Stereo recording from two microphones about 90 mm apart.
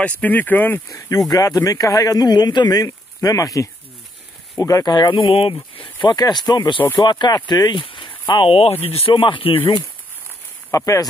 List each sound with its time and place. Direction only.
0.0 s speech: 20° left (ahead or behind)
0.8 s a man's voice: 40° left (ahead or behind)
4.9 s speech: 60° left (ahead or behind)
6.0 s a man's voice: 50° left (ahead or behind)
7.8 s a sound: 75° left (ahead or behind)
8.9 s speech: 80° left
10.7 s speech: 35° left (ahead or behind)